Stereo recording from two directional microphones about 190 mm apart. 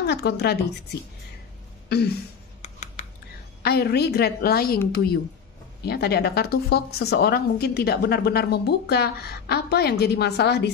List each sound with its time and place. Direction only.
0.0 s speech: 60° left (ahead or behind)
1.9 s a sound: 55° left (ahead or behind)
2.6 s computer keyboard: 40° left (ahead or behind)
3.6 s speech: 55° left (ahead or behind)